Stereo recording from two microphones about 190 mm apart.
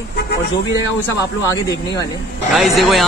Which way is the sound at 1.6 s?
15° left (ahead or behind).